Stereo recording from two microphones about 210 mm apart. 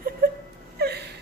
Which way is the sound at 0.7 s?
50° right (ahead or behind).